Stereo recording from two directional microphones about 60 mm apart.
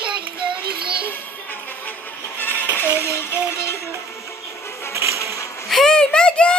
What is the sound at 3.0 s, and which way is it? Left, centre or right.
Music, left.